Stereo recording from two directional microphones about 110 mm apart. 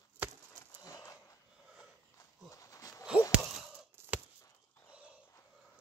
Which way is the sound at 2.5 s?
30° left (ahead or behind).